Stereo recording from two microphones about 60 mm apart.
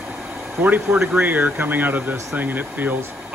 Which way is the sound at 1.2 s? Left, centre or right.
Right.